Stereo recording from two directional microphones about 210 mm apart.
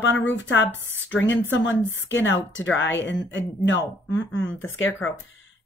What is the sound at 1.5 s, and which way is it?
A woman's voice, 60° left (ahead or behind).